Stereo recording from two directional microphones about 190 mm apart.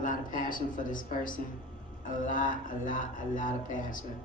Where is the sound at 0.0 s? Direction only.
45° left (ahead or behind).